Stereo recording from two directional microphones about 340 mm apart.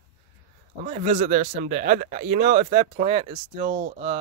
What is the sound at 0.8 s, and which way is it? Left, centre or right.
Speech, centre.